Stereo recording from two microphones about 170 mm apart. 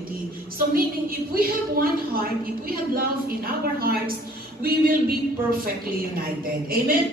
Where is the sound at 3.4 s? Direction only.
60° right (ahead or behind).